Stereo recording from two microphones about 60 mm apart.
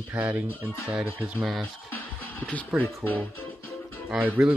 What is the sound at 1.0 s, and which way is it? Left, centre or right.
Speech, centre.